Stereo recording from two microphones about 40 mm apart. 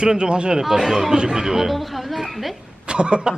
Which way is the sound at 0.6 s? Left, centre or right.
Centre.